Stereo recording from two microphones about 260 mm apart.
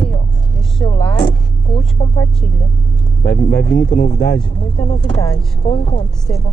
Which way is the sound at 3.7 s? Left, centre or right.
Left.